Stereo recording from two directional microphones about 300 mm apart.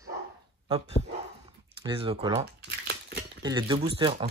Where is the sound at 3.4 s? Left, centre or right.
Centre.